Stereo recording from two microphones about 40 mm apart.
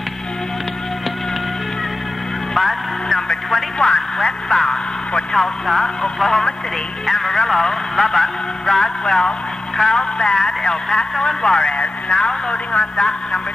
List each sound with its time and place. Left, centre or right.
2.5 s music: centre
3.9 s a sound: centre
6.1 s a man's voice: centre; by 12.5 s left